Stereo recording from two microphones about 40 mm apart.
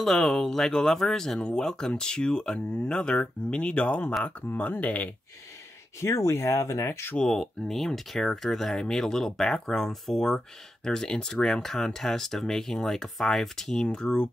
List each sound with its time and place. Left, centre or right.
0.0 s speech: centre; by 4.0 s left
4.5 s speech: left
6.0 s speech: left
7.2 s speech: centre
8.7 s speech: centre
13.9 s speech: left